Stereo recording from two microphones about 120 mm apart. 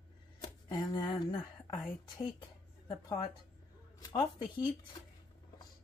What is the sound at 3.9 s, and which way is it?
Speech, 35° left (ahead or behind).